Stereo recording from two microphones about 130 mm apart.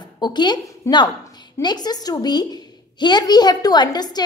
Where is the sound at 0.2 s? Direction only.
35° left (ahead or behind).